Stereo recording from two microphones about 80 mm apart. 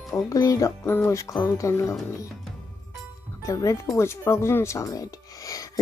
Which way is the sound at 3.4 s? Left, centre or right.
Left.